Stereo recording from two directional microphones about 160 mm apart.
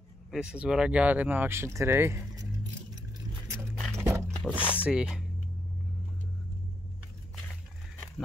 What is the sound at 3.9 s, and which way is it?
Dog, 20° right (ahead or behind).